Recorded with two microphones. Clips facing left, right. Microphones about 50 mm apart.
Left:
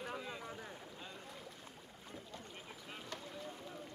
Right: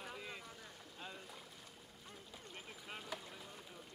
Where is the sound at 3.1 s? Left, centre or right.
Centre.